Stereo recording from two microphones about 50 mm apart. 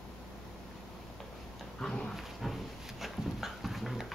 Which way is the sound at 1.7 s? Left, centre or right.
Centre.